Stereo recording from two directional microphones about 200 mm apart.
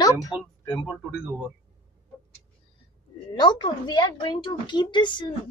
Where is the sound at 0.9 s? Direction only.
5° right (ahead or behind).